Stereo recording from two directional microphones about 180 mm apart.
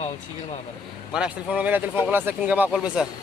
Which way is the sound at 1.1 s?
5° right (ahead or behind).